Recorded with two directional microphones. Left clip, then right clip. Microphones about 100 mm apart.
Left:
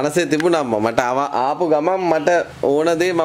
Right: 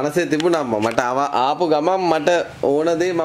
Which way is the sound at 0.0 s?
20° left (ahead or behind).